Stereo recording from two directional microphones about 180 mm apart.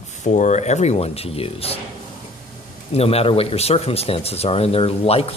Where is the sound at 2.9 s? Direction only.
35° left (ahead or behind).